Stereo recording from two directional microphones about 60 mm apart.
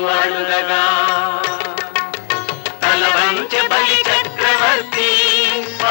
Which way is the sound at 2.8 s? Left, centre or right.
Left.